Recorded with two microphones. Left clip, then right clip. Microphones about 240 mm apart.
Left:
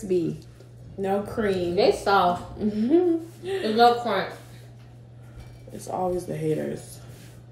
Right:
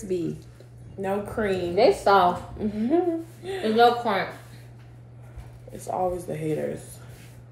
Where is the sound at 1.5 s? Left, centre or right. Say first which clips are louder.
Right 1 dB; centre.